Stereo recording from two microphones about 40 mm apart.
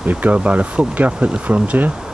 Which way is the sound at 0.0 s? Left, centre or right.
Right.